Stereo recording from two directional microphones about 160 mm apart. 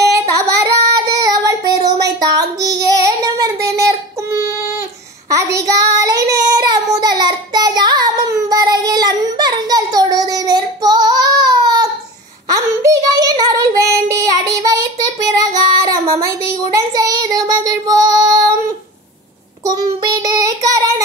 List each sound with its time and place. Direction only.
0.4 s child singing: 25° right (ahead or behind)